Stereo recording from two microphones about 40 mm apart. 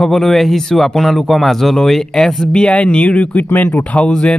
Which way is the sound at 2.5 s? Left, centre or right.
Left.